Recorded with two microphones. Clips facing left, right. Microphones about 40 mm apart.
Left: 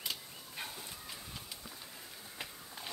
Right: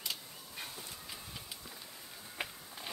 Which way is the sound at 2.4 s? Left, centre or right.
Right.